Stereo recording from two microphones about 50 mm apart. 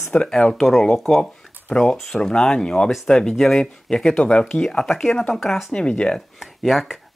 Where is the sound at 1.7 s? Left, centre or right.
Centre.